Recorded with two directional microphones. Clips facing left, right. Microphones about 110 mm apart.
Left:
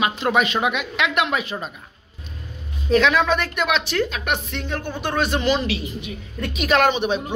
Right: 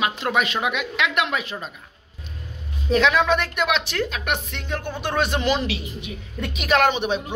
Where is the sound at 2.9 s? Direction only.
20° right (ahead or behind).